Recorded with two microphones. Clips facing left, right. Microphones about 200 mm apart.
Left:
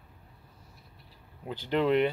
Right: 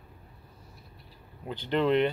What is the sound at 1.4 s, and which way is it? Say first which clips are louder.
Speech: right 1 dB; 5° left (ahead or behind).